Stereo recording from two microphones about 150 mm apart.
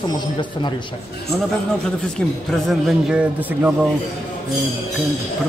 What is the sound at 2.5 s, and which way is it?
A man's voice, centre (ahead or behind).